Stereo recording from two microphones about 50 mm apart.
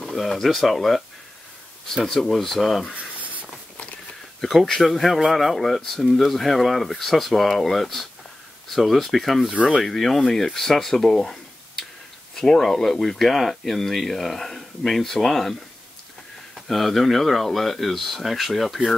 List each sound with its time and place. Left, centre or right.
0.1 s speech: centre
2.0 s speech: centre
3.0 s a sound: right
4.4 s speech: centre
16.5 s speech: centre